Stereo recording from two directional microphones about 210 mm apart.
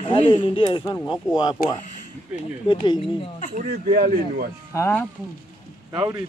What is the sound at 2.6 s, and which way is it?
Speech, 20° left (ahead or behind).